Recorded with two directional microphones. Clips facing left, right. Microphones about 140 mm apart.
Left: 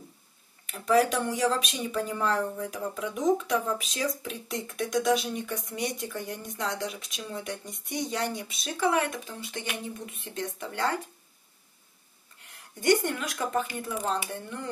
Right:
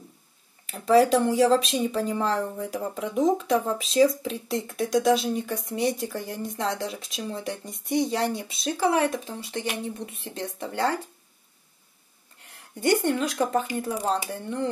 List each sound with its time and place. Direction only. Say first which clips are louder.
0.7 s speech: right 5 dB; 30° right (ahead or behind)
12.8 s speech: right 2 dB; 30° right (ahead or behind)